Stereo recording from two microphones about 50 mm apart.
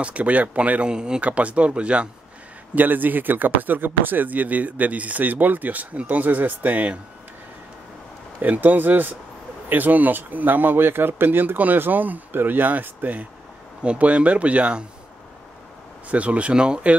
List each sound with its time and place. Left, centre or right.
0.0 s speech: right
1.2 s speech: right
2.7 s speech: right
8.4 s speech: right
16.1 s speech: right